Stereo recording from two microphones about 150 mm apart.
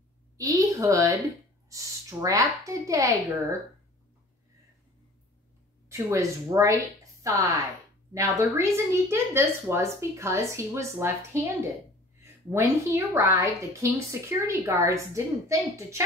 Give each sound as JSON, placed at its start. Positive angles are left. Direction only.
{"t": 0.4, "sound": "a woman's voice", "side_deg": -20}
{"t": 5.9, "sound": "a woman's voice", "side_deg": -20}